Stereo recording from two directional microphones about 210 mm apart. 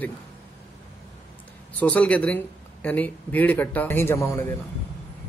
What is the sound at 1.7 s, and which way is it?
Speech, 5° left (ahead or behind).